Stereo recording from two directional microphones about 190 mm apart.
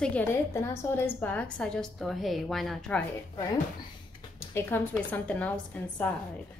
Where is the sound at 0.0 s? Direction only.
10° left (ahead or behind).